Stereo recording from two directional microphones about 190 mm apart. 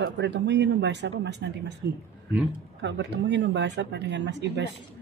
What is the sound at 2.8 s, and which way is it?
Speech, 65° right (ahead or behind).